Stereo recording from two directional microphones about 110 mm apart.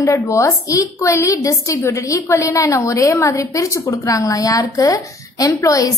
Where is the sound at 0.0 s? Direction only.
30° left (ahead or behind).